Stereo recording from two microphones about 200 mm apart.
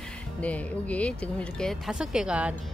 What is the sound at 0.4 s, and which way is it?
A woman's voice, 5° left (ahead or behind).